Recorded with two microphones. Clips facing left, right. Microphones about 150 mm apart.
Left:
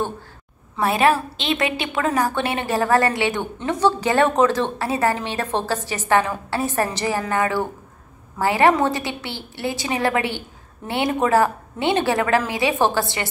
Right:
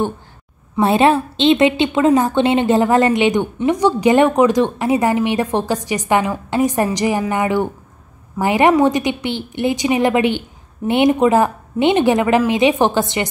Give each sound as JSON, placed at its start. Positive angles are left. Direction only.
{"t": 0.7, "sound": "a woman's voice", "side_deg": -25}